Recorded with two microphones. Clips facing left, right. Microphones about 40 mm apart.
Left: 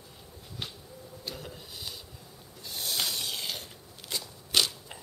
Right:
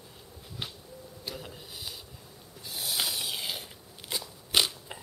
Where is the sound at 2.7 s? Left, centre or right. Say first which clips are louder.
Even; centre.